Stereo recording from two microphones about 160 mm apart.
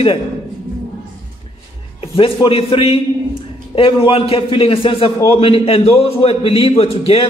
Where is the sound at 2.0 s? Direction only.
35° left (ahead or behind).